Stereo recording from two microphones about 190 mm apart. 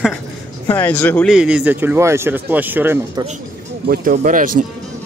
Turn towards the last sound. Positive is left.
turn(degrees=-45)  # may be behind; listen again after turning